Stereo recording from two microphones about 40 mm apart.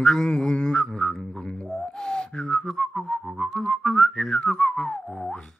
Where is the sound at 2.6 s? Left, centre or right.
Centre.